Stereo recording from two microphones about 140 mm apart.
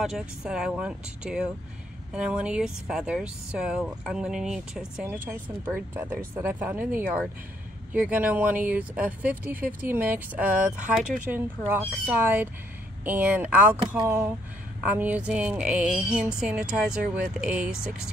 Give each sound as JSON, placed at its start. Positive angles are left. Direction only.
{"t": 0.0, "sound": "speech", "side_deg": -5}